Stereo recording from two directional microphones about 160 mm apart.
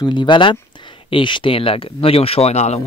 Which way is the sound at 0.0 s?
30° left (ahead or behind).